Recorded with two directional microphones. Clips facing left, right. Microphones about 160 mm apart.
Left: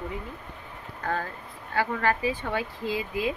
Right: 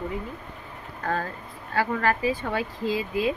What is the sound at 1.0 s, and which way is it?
Speech, 10° left (ahead or behind).